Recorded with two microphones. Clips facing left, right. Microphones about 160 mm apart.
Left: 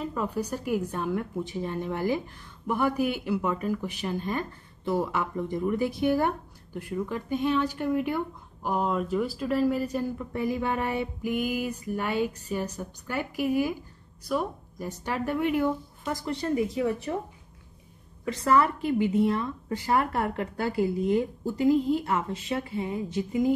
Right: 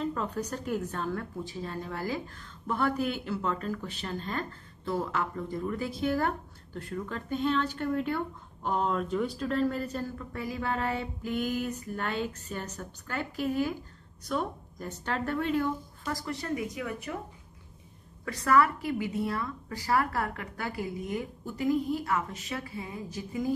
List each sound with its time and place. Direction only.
0.0 s a woman's voice: 10° left (ahead or behind); by 17.2 s 30° left (ahead or behind)
18.2 s a woman's voice: 25° left (ahead or behind)